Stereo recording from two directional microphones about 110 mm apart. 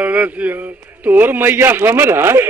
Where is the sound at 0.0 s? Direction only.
10° right (ahead or behind).